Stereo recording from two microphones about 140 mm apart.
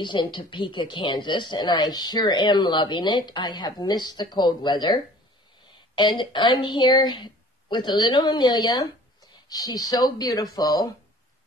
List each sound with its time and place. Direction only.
0.0 s speech: 35° left (ahead or behind)